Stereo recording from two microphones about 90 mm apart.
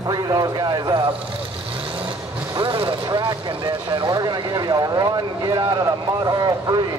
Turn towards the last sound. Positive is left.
turn(degrees=-50)  # may be behind; listen again after turning